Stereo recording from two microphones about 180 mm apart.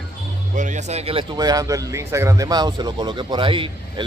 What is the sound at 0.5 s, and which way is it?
Speech, 45° right (ahead or behind).